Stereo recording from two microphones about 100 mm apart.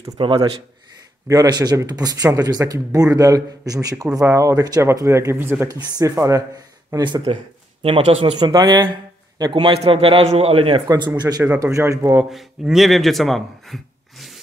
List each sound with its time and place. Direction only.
0.2 s speech: 55° right (ahead or behind)
1.2 s speech: 35° right (ahead or behind)
5.7 s speech: 35° right (ahead or behind)
7.8 s a man's voice: 70° right (ahead or behind)
8.4 s a man's voice: 50° right (ahead or behind); by 10.8 s 65° right (ahead or behind)
11.1 s speech: 40° right (ahead or behind)
12.3 s speech: centre (ahead or behind)